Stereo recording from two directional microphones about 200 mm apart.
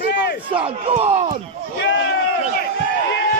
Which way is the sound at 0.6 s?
30° right (ahead or behind).